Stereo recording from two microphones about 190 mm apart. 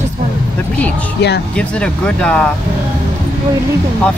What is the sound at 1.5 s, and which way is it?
Speech, 5° left (ahead or behind).